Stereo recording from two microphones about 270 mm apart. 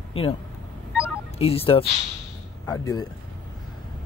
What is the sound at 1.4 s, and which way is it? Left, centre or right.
Speech, left.